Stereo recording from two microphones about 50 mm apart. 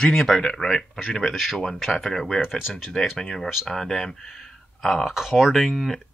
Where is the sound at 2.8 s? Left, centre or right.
Centre.